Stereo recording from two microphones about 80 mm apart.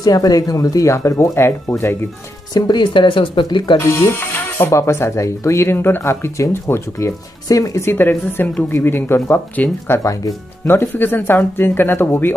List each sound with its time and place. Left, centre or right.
0.0 s speech: left
0.9 s speech: left
2.5 s speech: left
3.8 s speech: left
7.4 s speech: left
7.8 s speech: left